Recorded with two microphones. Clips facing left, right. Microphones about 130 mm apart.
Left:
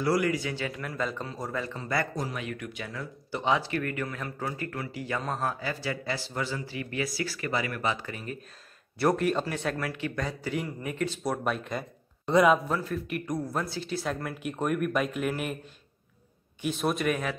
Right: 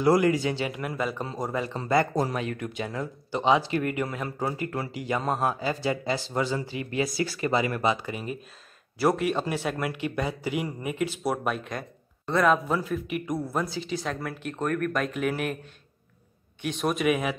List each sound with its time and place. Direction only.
0.0 s a man's voice: 25° right (ahead or behind); by 11.8 s centre (ahead or behind)
12.3 s a man's voice: 10° left (ahead or behind)
12.6 s speech: 5° right (ahead or behind)
16.6 s speech: centre (ahead or behind)